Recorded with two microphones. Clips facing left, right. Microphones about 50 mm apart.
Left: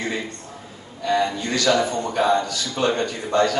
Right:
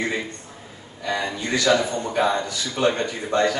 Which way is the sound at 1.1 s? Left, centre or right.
Centre.